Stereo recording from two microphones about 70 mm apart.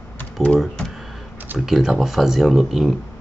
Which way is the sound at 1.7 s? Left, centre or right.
Centre.